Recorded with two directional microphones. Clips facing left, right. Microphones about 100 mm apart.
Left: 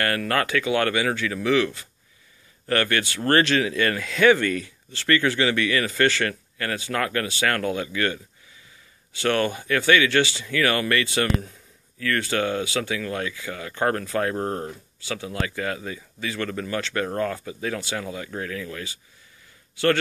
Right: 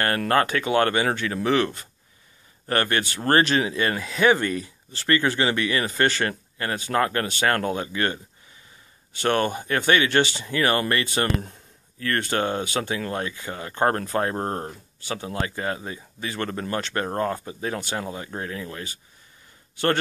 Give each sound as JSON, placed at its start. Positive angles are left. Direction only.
{"t": 0.3, "sound": "speech", "side_deg": -30}
{"t": 2.7, "sound": "speech", "side_deg": -30}
{"t": 9.3, "sound": "speech", "side_deg": -40}
{"t": 10.4, "sound": "speech", "side_deg": -30}